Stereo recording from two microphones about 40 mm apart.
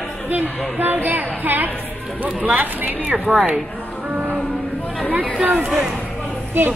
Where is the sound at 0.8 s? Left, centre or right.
Right.